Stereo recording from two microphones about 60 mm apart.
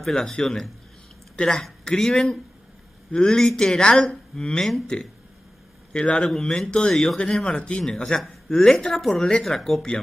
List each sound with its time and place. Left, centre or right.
0.0 s speech: centre
7.4 s speech: centre